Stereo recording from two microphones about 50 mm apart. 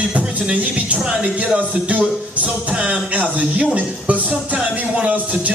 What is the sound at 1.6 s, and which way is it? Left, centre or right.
Speech, right.